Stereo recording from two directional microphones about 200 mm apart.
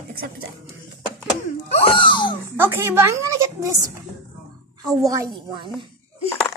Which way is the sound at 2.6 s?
10° right (ahead or behind).